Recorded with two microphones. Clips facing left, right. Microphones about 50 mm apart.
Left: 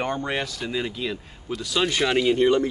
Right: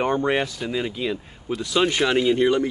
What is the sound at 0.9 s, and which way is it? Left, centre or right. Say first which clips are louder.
Speech: right 3 dB; centre.